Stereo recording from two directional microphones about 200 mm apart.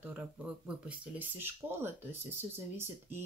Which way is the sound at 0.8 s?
10° right (ahead or behind).